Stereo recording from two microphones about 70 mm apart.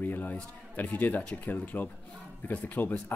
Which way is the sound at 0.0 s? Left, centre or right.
Left.